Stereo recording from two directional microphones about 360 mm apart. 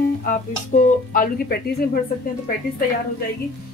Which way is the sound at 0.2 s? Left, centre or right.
Left.